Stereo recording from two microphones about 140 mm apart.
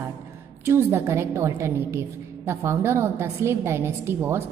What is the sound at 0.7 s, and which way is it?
A woman's voice, 20° right (ahead or behind).